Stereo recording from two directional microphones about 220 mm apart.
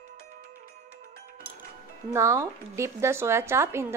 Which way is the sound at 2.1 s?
15° right (ahead or behind).